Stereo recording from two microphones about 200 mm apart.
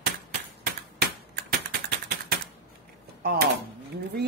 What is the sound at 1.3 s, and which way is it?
Typing, 50° right (ahead or behind).